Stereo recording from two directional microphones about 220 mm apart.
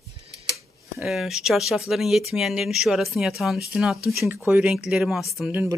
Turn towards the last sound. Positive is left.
turn(degrees=-10)  # may be behind; listen again after turning